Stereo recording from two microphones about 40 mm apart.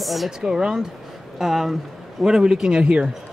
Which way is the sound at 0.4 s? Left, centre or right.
Centre.